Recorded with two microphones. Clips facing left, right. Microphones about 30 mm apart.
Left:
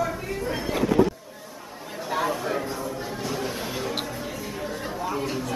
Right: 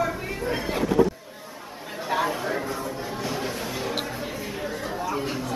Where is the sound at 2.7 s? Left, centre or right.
Centre.